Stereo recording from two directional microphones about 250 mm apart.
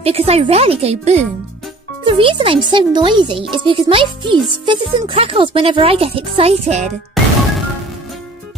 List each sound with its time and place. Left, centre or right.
0.0 s speech: right